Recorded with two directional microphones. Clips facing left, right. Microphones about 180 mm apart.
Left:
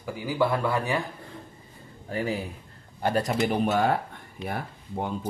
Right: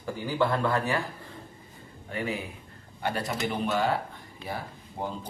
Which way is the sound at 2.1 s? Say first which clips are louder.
Left 3 dB; 35° left (ahead or behind).